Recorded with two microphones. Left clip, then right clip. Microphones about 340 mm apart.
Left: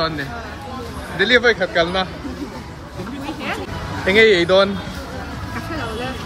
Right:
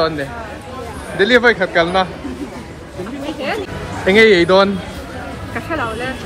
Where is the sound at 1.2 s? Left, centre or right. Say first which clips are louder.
Right 3 dB; centre.